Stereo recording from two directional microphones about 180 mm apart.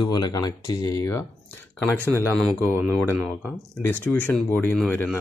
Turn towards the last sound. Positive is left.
turn(degrees=5)  # may be behind; listen again after turning